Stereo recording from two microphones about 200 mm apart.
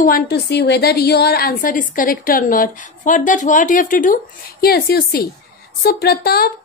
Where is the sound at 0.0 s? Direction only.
50° left (ahead or behind).